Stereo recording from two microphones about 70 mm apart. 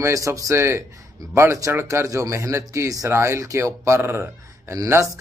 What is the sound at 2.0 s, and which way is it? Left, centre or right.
Speech, right.